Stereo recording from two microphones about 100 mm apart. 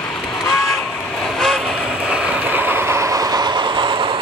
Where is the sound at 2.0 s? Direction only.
10° right (ahead or behind).